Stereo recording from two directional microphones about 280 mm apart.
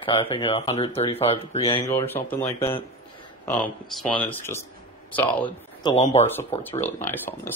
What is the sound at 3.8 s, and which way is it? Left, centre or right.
Speech, centre.